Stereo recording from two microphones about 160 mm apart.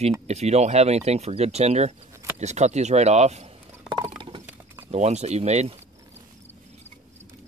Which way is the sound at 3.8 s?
30° right (ahead or behind).